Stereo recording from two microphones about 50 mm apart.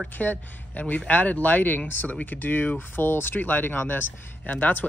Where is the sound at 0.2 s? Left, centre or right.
Left.